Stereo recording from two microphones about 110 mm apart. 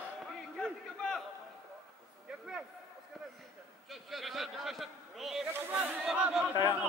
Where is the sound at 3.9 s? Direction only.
Centre (ahead or behind).